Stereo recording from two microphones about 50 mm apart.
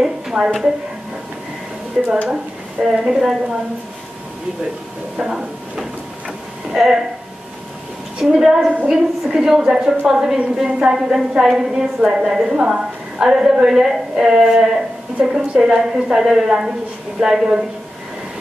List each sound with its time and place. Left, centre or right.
0.0 s a sound: centre
2.0 s a woman's voice: centre
5.1 s a woman's voice: centre
8.2 s a woman's voice: centre